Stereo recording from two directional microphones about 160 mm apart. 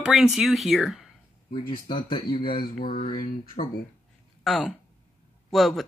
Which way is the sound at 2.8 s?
55° left (ahead or behind).